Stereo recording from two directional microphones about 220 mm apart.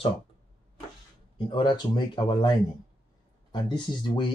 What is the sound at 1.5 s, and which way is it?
Speech, 20° left (ahead or behind).